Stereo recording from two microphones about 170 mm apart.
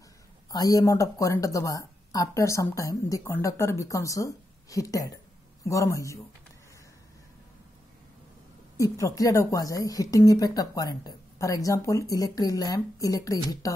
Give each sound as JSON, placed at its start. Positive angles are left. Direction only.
{"t": 0.5, "sound": "speech", "side_deg": 20}
{"t": 8.7, "sound": "speech", "side_deg": 20}